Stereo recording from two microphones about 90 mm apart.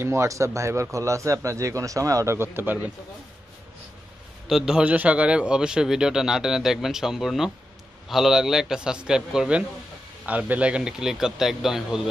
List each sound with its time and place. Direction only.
0.0 s a man's voice: 30° right (ahead or behind)
2.3 s speech: 25° right (ahead or behind)
4.5 s a man's voice: 5° right (ahead or behind)